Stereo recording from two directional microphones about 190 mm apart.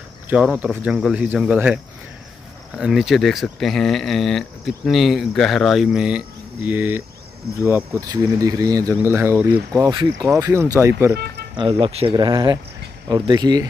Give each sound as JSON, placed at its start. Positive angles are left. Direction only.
{"t": 0.3, "sound": "speech", "side_deg": -5}
{"t": 11.5, "sound": "speech", "side_deg": -30}